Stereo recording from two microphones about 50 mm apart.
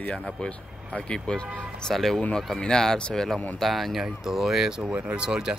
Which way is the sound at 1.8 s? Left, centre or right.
Centre.